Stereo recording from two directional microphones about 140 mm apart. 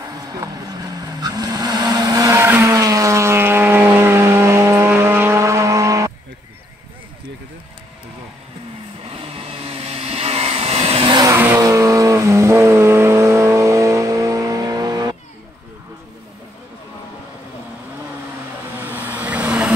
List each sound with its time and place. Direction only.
0.0 s vehicle: 25° right (ahead or behind)
9.0 s vehicle: 45° right (ahead or behind)
11.1 s vehicle: 20° right (ahead or behind)
18.8 s vehicle: 15° right (ahead or behind)